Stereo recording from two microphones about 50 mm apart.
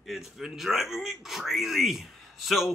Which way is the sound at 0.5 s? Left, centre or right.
Centre.